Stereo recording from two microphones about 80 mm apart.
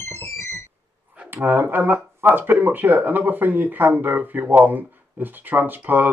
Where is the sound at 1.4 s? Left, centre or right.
Right.